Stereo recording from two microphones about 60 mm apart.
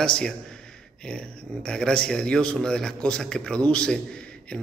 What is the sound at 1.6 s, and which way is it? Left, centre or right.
A man's voice, centre.